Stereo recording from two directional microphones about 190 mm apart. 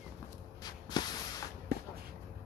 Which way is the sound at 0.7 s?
20° left (ahead or behind).